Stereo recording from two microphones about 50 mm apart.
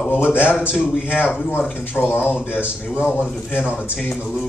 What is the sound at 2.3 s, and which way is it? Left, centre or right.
Speech, left.